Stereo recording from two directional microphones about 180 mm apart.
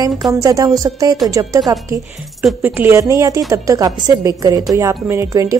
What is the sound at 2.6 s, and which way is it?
A woman's voice, 15° right (ahead or behind).